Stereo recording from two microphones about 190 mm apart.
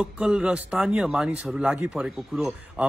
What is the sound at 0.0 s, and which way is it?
Speech, 5° right (ahead or behind).